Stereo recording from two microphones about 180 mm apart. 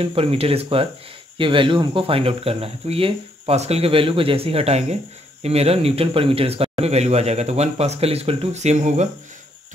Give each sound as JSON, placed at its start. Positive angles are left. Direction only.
{"t": 0.0, "sound": "speech", "side_deg": -30}